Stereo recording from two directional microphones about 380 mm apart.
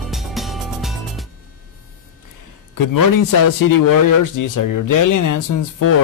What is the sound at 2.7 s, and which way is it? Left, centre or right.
A man's voice, left.